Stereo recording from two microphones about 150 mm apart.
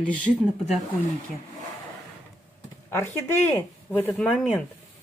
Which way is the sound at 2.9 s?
15° left (ahead or behind).